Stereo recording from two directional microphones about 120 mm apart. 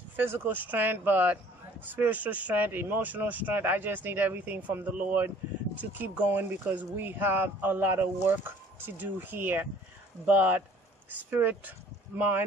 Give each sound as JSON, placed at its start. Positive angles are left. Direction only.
{"t": 0.1, "sound": "speech", "side_deg": -20}